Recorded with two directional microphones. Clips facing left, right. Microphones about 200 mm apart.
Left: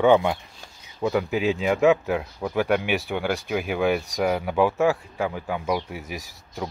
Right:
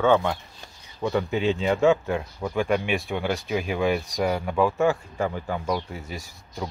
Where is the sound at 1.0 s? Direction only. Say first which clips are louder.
Left 1 dB; 5° left (ahead or behind).